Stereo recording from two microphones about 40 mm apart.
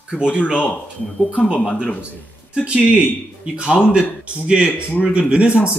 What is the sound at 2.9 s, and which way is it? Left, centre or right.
Speech, right.